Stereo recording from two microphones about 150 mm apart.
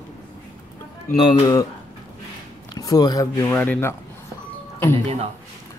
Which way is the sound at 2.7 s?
25° left (ahead or behind).